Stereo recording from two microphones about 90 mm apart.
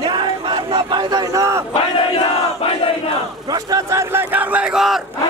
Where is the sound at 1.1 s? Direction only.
40° right (ahead or behind).